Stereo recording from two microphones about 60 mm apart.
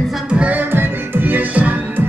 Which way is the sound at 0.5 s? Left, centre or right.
Right.